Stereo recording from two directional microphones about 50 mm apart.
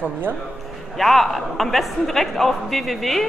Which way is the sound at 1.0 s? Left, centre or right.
Centre.